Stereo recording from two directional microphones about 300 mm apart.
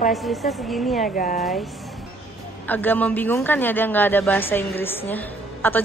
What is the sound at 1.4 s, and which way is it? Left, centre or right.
A woman's voice, centre.